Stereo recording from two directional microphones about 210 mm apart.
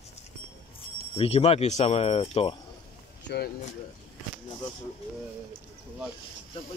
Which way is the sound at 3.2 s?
50° left (ahead or behind).